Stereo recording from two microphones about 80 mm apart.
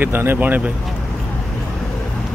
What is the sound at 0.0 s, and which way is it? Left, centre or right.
Speech, right.